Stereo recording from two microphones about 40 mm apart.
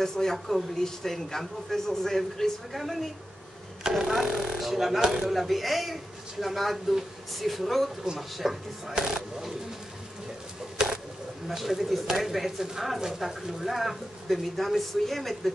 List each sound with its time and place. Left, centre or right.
0.0 s speech: centre
4.0 s speech: right
4.6 s speech: centre
8.9 s speech: right
10.8 s a sound: centre
11.4 s speech: centre